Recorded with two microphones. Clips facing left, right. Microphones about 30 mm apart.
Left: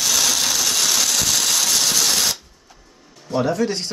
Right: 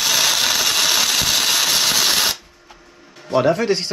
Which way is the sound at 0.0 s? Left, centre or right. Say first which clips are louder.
Right 2 dB; right.